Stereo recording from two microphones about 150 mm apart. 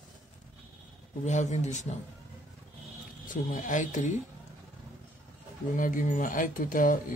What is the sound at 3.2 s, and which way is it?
Speech, 60° left (ahead or behind).